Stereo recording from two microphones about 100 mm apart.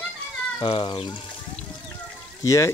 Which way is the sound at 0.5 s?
55° left (ahead or behind).